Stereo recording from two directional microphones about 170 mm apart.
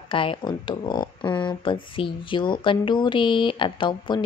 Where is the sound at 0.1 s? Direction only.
30° left (ahead or behind).